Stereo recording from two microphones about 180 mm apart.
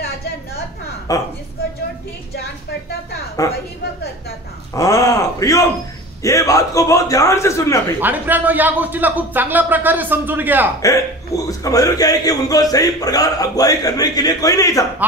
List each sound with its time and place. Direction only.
1.1 s a man's voice: 20° left (ahead or behind)
3.4 s a man's voice: 20° left (ahead or behind)
4.7 s a man's voice: 20° left (ahead or behind)
8.0 s a man's voice: 10° right (ahead or behind)
11.3 s a man's voice: 15° left (ahead or behind)